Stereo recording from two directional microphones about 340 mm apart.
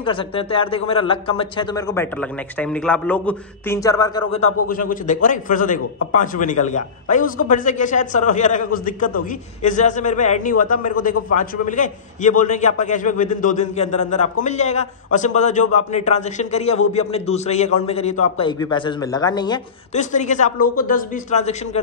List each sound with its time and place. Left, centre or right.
0.0 s a man's voice: centre
4.6 s a man's voice: left